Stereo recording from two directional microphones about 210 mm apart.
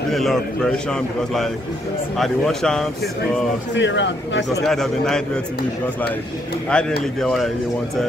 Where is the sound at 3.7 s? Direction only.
60° left (ahead or behind).